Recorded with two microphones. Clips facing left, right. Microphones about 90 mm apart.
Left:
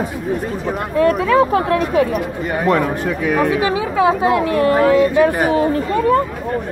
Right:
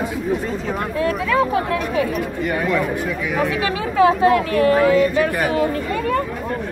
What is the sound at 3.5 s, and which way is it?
Speech, 20° left (ahead or behind).